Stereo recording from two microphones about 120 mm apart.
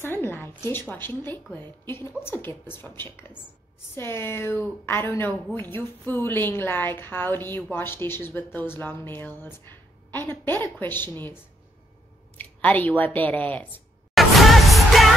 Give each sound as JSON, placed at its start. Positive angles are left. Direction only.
{"t": 0.0, "sound": "speech", "side_deg": 15}
{"t": 12.4, "sound": "speech", "side_deg": 15}
{"t": 14.1, "sound": "music", "side_deg": 0}